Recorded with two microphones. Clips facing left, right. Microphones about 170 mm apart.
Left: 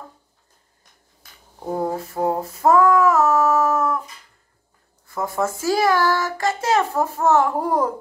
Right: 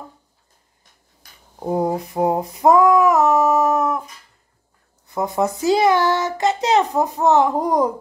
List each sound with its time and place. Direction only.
1.6 s child singing: 15° right (ahead or behind)
5.0 s a child's voice: 20° right (ahead or behind)